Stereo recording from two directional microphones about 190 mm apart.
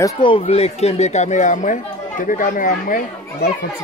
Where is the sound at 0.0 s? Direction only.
25° left (ahead or behind).